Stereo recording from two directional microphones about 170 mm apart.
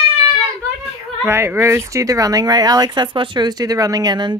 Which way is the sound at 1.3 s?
15° right (ahead or behind).